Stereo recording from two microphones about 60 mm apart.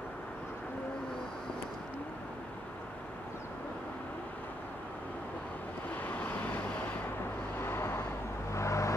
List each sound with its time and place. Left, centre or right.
6.0 s vehicle: left
7.6 s vehicle: left
8.5 s vehicle: left